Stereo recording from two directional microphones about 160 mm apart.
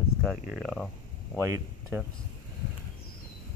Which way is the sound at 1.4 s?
15° right (ahead or behind).